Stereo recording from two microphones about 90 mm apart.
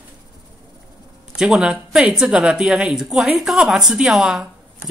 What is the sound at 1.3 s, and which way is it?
Speech, 5° right (ahead or behind).